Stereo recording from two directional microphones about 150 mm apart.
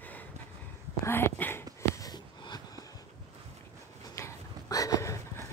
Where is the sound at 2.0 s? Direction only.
25° left (ahead or behind).